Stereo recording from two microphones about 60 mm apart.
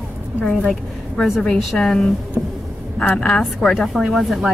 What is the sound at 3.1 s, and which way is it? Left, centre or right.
Speech, centre.